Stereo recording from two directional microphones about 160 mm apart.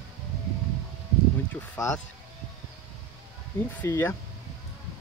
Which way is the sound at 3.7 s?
15° left (ahead or behind).